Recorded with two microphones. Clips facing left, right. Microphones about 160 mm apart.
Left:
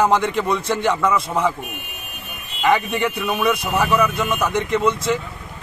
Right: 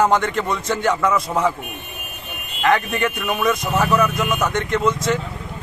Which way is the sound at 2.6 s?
5° left (ahead or behind).